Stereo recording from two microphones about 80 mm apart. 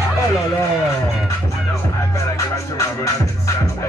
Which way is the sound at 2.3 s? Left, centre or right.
Left.